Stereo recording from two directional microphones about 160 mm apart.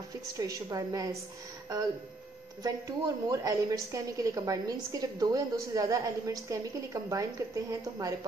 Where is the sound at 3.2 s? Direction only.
20° right (ahead or behind).